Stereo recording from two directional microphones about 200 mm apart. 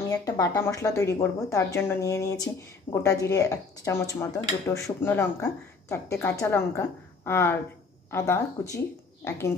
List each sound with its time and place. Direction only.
0.1 s speech: 15° left (ahead or behind)